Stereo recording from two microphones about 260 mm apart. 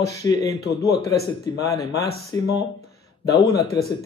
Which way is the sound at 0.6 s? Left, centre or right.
Left.